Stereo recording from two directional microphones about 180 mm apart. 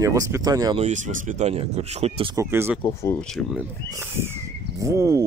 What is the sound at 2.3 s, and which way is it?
Speech, 15° right (ahead or behind).